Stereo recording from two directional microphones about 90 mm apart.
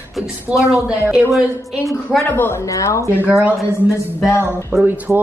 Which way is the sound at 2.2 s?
25° left (ahead or behind).